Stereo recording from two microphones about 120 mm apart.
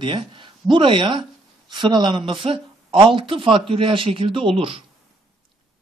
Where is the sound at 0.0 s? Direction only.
45° right (ahead or behind).